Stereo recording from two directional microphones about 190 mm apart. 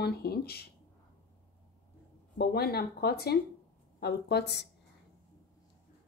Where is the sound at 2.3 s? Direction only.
55° left (ahead or behind).